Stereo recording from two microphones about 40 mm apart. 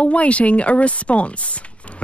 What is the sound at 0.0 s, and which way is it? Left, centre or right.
Speech, left.